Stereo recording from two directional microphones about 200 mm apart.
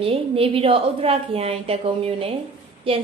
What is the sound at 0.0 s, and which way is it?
A woman's voice, 30° right (ahead or behind).